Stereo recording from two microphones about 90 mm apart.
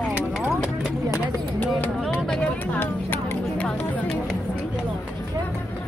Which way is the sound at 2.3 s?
15° left (ahead or behind).